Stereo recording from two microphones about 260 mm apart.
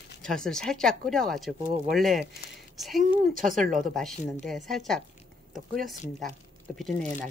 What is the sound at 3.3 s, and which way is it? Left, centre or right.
Speech, right.